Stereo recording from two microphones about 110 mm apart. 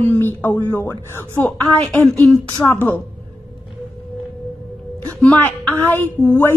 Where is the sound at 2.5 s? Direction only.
30° left (ahead or behind).